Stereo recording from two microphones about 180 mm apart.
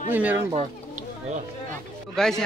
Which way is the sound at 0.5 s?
40° right (ahead or behind).